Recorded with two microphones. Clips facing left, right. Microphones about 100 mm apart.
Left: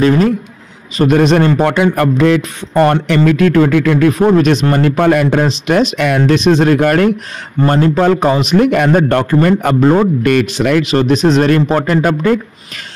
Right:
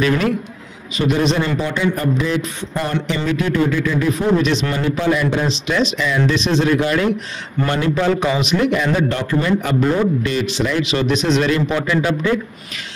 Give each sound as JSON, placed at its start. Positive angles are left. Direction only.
{"t": 0.9, "sound": "speech", "side_deg": 55}
{"t": 7.6, "sound": "a man's voice", "side_deg": 45}